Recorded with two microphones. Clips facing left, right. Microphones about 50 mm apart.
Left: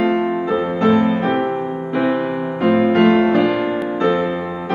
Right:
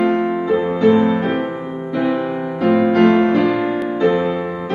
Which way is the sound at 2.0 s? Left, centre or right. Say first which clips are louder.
Even; left.